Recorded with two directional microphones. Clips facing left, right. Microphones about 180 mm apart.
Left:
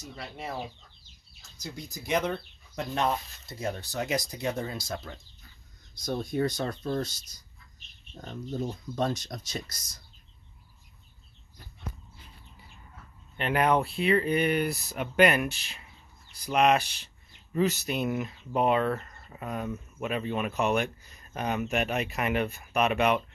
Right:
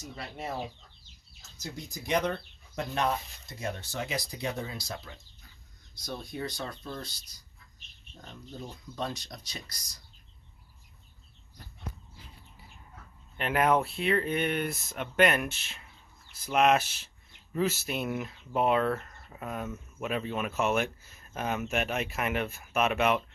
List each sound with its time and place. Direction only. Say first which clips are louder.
2.0 s speech: even; 5° left (ahead or behind)
3.4 s speech: left 5 dB; 35° left (ahead or behind)
13.4 s speech: left 1 dB; centre (ahead or behind)